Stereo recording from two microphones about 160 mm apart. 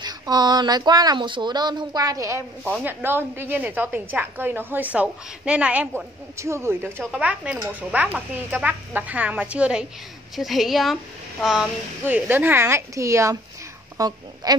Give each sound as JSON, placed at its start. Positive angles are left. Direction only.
{"t": 0.0, "sound": "a woman's voice", "side_deg": -25}